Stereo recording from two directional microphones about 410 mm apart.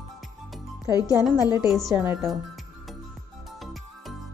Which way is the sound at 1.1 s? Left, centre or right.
Centre.